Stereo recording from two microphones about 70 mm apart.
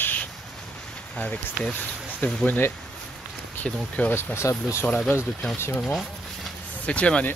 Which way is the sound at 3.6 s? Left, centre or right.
Centre.